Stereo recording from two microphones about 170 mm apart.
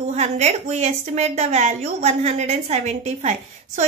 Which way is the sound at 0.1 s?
40° right (ahead or behind).